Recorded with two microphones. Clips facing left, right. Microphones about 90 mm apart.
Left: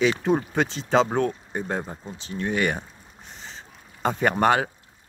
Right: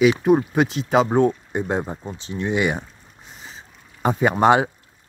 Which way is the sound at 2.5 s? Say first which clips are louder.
Right 3 dB; 15° right (ahead or behind).